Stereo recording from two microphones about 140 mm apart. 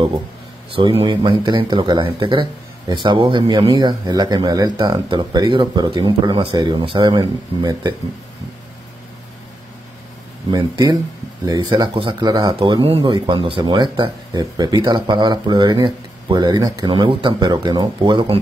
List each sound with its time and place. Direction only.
0.7 s speech: 40° right (ahead or behind)
10.5 s speech: 30° right (ahead or behind)